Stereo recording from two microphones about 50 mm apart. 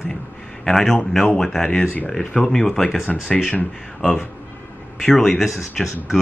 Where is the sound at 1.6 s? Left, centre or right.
Centre.